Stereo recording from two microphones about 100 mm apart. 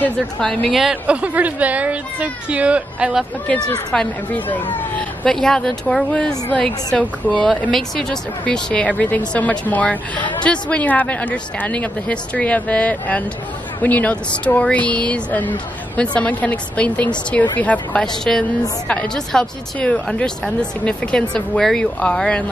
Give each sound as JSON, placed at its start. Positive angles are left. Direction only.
{"t": 0.4, "sound": "speech", "side_deg": 5}
{"t": 0.7, "sound": "speech", "side_deg": -10}
{"t": 3.4, "sound": "speech", "side_deg": 10}
{"t": 5.2, "sound": "speech", "side_deg": 5}